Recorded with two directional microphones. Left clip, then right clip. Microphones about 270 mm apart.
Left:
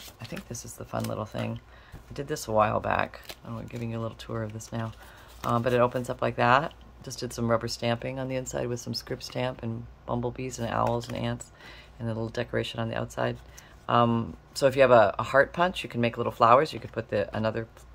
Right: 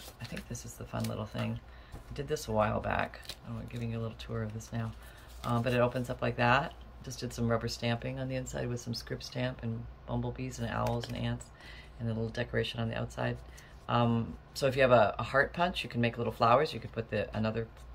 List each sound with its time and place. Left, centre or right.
0.2 s speech: centre